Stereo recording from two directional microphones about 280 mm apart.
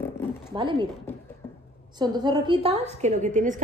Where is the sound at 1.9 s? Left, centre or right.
Centre.